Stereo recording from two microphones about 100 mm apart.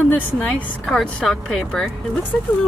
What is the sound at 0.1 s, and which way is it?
Speech, 10° left (ahead or behind).